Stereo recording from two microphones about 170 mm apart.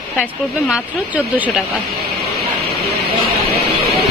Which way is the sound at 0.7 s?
10° right (ahead or behind).